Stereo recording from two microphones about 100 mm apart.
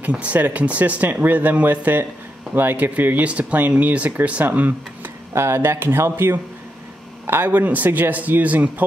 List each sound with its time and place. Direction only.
0.0 s speech: 15° right (ahead or behind)